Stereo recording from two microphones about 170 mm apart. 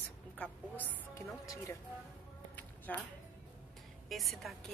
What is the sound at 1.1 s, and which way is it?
Speech, 20° left (ahead or behind).